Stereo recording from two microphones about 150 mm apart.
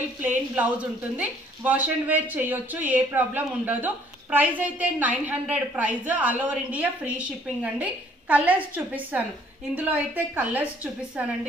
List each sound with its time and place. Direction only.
0.6 s speech: 10° right (ahead or behind)